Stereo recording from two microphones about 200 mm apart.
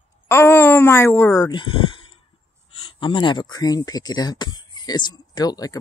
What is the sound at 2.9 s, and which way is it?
Speech, 25° left (ahead or behind).